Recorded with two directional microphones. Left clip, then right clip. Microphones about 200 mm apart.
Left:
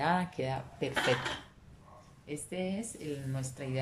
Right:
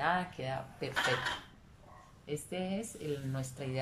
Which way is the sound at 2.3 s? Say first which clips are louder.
Even; 10° left (ahead or behind).